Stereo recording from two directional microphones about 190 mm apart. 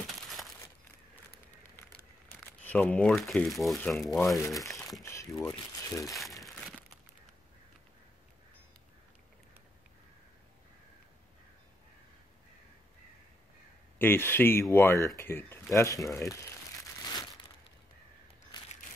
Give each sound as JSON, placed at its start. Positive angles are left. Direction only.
{"t": 1.6, "sound": "a sound", "side_deg": 10}
{"t": 2.6, "sound": "speech", "side_deg": 10}
{"t": 5.0, "sound": "speech", "side_deg": 15}
{"t": 6.4, "sound": "crumpling", "side_deg": 0}
{"t": 13.9, "sound": "speech", "side_deg": 10}
{"t": 18.5, "sound": "crushing", "side_deg": 25}